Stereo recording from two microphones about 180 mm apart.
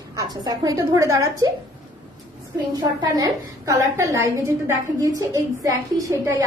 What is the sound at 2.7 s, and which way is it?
A woman's voice, 20° right (ahead or behind).